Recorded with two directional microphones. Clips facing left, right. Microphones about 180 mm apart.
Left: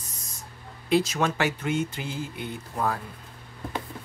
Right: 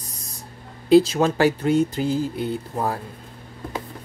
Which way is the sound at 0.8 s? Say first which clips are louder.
Right 8 dB; 30° right (ahead or behind).